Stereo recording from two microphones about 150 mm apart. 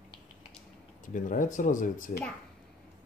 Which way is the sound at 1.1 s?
60° left (ahead or behind).